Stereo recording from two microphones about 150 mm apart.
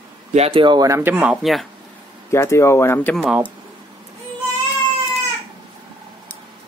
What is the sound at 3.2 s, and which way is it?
Speech, 10° right (ahead or behind).